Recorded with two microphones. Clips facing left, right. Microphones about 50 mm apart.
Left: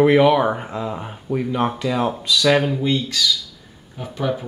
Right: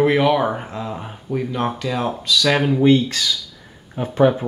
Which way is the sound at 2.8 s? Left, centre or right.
Right.